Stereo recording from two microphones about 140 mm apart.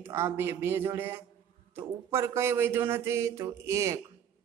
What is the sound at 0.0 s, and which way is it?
Speech, 15° right (ahead or behind).